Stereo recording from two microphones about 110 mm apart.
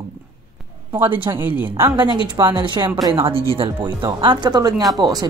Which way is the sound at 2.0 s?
40° right (ahead or behind).